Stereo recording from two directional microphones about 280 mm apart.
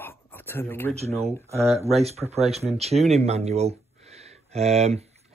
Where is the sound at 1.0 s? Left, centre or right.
Right.